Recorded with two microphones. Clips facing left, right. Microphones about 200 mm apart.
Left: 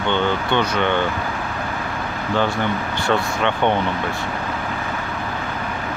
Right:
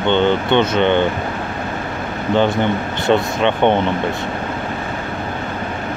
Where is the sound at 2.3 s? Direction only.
20° right (ahead or behind).